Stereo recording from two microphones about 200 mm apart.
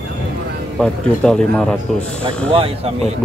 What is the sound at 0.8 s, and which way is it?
Mantra, 5° left (ahead or behind).